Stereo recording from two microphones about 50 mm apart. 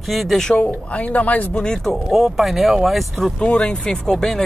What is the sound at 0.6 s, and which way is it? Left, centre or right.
Speech, left.